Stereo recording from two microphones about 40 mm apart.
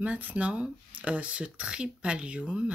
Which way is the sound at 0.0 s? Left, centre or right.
Right.